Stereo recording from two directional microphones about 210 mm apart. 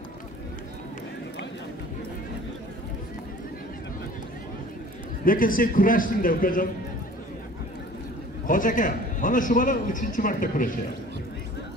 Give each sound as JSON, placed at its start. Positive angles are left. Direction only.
{"t": 5.2, "sound": "a man's voice", "side_deg": 40}
{"t": 8.5, "sound": "a man's voice", "side_deg": 40}